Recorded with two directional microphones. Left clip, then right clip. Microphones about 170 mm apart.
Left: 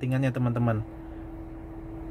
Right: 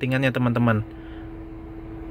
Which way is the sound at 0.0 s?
10° right (ahead or behind).